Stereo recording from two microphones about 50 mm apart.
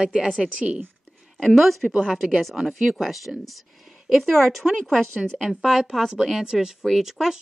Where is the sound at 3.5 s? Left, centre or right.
Centre.